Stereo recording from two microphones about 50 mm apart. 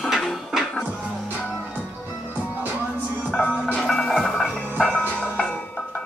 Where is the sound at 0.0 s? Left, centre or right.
Centre.